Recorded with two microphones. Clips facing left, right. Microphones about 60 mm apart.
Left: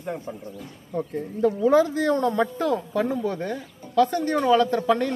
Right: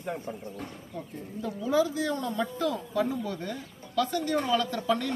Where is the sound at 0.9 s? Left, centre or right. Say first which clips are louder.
Left 12 dB; left.